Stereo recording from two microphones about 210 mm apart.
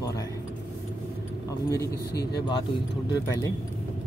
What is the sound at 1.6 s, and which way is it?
Speech, 15° left (ahead or behind).